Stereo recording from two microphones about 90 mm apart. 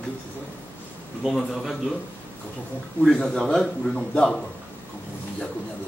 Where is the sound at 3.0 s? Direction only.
5° left (ahead or behind).